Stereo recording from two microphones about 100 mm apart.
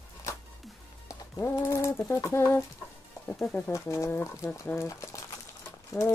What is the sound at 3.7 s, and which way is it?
Speech, 30° left (ahead or behind).